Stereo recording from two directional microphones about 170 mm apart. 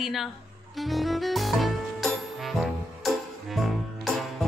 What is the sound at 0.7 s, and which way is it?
Music, centre (ahead or behind).